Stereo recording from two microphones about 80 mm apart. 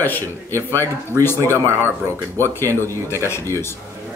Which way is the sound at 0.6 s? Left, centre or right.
Right.